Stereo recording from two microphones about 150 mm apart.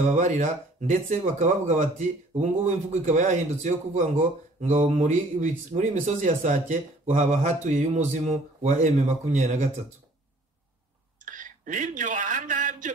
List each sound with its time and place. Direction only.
0.0 s speech: 55° right (ahead or behind)
11.2 s speech: 60° right (ahead or behind)